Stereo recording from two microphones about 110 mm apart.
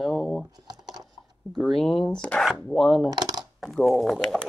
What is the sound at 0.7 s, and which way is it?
Computer keyboard, 40° right (ahead or behind).